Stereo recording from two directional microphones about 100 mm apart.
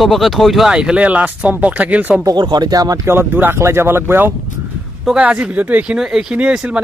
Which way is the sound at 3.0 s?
20° right (ahead or behind).